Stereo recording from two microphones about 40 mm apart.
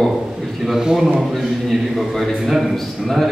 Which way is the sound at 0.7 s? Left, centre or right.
Centre.